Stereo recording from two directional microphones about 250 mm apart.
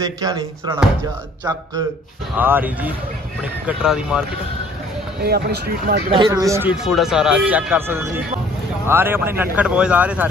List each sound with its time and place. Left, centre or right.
0.0 s speech: centre
2.3 s speech: centre
5.2 s speech: right
6.1 s speech: centre